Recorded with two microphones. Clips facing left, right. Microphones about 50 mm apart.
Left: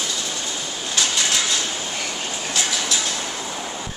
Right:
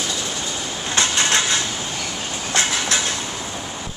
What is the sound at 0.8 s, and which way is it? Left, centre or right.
Train, right.